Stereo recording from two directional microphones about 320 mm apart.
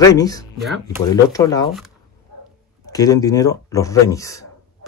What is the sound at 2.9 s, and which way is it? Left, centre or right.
A man's voice, centre.